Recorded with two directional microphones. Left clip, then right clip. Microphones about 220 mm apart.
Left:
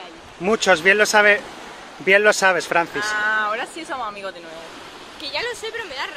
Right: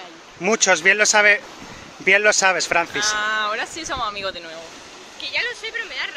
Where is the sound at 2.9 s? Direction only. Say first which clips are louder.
Even; 55° right (ahead or behind).